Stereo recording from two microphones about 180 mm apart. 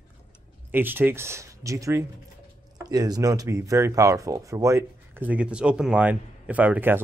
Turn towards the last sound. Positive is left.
turn(degrees=-10)  # may be behind; listen again after turning